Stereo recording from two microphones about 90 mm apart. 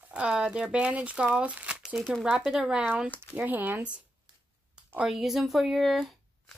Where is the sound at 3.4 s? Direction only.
20° right (ahead or behind).